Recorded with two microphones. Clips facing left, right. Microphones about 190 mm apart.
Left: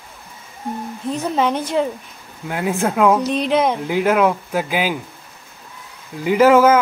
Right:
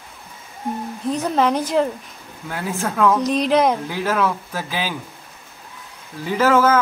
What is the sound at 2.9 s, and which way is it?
Speech, 15° left (ahead or behind).